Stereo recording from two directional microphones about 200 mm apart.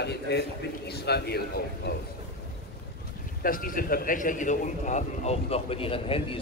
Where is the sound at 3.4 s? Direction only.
45° left (ahead or behind).